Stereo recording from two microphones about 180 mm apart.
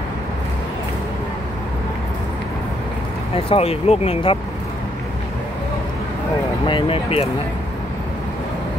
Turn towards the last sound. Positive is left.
turn(degrees=30)  # may be behind; listen again after turning